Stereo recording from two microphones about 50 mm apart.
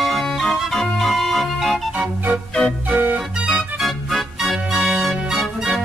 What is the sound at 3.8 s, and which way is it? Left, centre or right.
Organ, centre.